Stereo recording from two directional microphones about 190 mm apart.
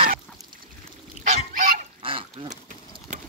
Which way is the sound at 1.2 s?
40° right (ahead or behind).